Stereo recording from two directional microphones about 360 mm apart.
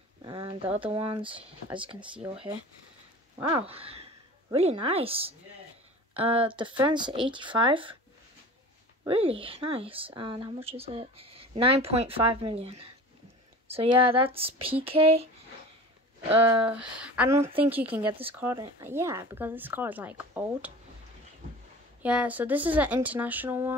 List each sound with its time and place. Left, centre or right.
0.2 s speech: centre
3.3 s speech: centre
9.0 s speech: centre
16.3 s speech: centre
22.0 s speech: centre